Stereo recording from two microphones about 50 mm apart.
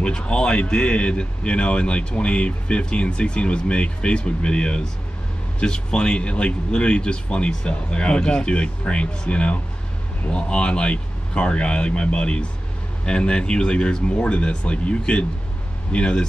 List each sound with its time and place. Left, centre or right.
0.0 s speech: left